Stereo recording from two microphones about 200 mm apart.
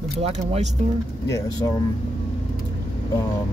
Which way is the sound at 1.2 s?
15° left (ahead or behind).